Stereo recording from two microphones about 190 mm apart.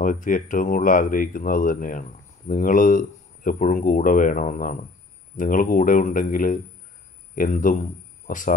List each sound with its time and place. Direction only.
0.0 s speech: 45° left (ahead or behind)